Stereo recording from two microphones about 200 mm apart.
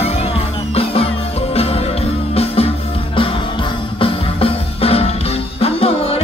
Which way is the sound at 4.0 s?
30° left (ahead or behind).